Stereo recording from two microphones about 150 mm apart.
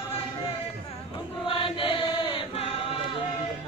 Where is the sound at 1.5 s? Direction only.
35° left (ahead or behind).